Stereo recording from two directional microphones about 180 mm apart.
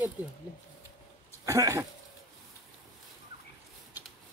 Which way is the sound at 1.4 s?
15° right (ahead or behind).